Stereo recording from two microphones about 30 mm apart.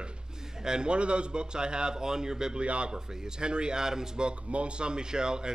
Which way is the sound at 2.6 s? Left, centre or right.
Right.